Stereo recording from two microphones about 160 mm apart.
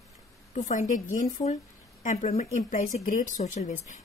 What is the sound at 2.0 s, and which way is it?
A woman's voice, 50° left (ahead or behind).